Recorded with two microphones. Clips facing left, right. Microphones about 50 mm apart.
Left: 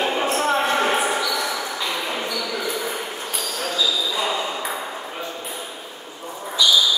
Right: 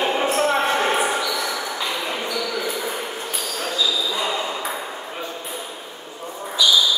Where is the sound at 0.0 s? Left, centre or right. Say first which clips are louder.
Right 1 dB; centre.